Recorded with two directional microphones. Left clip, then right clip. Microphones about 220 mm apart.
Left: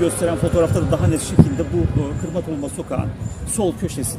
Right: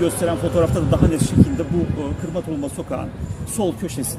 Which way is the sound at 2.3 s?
10° left (ahead or behind).